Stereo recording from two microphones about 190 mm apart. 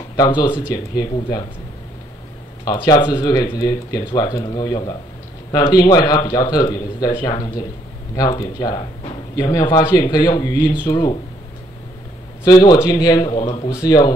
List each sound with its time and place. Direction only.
0.1 s speech: 20° left (ahead or behind)
2.6 s speech: 20° left (ahead or behind)
12.4 s speech: 20° left (ahead or behind)